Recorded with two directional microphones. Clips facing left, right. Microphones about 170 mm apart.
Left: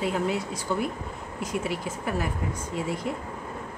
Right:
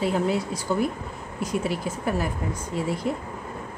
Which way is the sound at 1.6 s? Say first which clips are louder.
Right 3 dB; 35° right (ahead or behind).